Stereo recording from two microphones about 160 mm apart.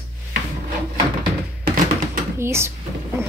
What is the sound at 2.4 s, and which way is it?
Speech, 15° right (ahead or behind).